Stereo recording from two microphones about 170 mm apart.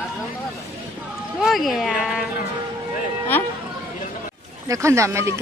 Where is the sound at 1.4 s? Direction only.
Centre (ahead or behind).